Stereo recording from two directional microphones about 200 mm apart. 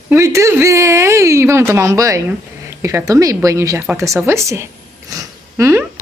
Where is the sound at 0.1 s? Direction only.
15° right (ahead or behind).